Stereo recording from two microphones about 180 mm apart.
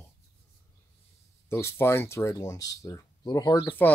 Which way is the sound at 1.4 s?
15° left (ahead or behind).